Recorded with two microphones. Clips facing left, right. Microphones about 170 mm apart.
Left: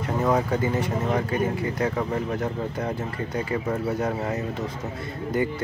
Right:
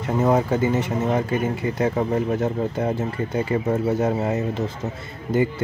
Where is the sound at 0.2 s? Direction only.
25° right (ahead or behind).